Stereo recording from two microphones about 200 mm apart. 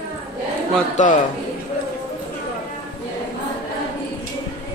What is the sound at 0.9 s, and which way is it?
Speech, 40° left (ahead or behind).